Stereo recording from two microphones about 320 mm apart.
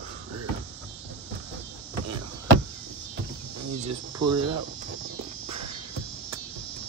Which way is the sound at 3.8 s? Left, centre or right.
Right.